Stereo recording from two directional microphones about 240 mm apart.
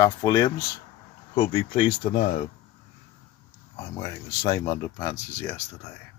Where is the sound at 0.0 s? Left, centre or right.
Centre.